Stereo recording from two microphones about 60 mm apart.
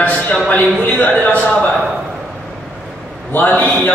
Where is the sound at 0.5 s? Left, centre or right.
Left.